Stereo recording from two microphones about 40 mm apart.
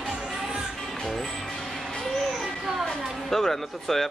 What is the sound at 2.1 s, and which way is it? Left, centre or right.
Children playing, centre.